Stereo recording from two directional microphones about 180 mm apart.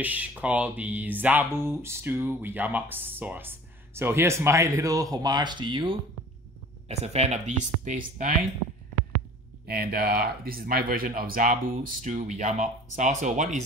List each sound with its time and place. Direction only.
0.0 s speech: 10° right (ahead or behind); by 8.5 s 45° right (ahead or behind)
9.7 s speech: 55° right (ahead or behind)